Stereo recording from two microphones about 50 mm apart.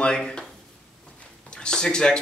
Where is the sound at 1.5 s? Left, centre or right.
Centre.